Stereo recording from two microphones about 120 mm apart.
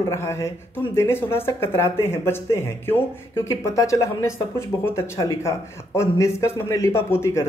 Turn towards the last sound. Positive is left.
turn(degrees=20)  # may be behind; listen again after turning